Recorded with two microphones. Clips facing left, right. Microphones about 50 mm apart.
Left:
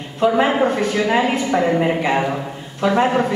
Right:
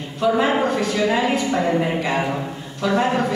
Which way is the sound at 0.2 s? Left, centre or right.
Left.